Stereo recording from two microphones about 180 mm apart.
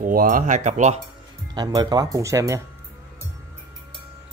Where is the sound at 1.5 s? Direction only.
25° right (ahead or behind).